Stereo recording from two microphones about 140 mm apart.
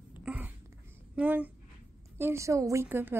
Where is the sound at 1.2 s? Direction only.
10° right (ahead or behind).